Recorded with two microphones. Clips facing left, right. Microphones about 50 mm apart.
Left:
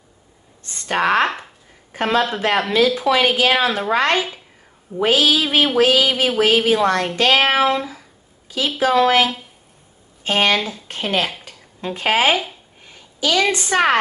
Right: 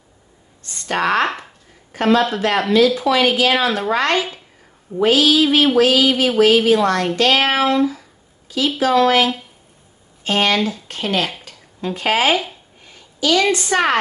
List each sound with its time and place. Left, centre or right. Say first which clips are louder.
0.8 s speech: left 1 dB; centre
1.9 s a sound: right 5 dB; centre
2.7 s a woman's voice: right 3 dB; left